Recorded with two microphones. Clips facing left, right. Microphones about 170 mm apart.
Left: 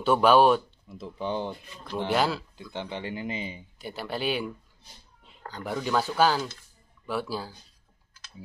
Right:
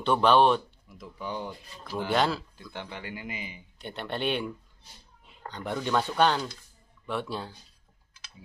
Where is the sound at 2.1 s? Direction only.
Centre (ahead or behind).